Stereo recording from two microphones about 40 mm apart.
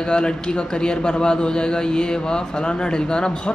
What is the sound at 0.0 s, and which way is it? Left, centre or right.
Speech, left.